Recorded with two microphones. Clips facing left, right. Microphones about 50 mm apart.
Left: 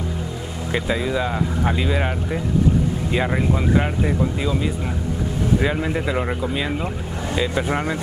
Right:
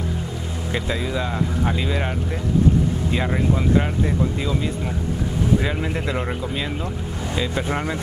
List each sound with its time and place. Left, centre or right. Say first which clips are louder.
0.7 s speech: left 3 dB; centre